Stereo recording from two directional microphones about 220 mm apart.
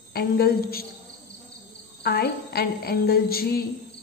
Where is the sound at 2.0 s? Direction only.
45° left (ahead or behind).